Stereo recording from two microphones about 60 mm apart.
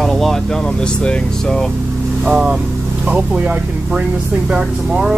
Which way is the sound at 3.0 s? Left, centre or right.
Right.